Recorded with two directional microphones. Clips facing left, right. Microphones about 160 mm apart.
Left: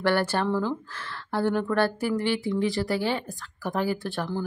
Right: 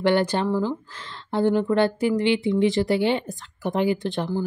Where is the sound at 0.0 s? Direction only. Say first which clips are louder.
Right 3 dB; 15° right (ahead or behind).